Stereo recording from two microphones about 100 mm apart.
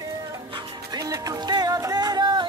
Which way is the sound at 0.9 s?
35° right (ahead or behind).